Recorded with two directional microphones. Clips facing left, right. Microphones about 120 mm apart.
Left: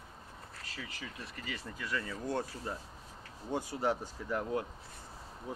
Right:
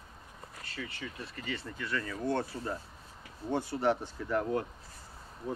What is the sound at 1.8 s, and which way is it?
Speech, 15° left (ahead or behind).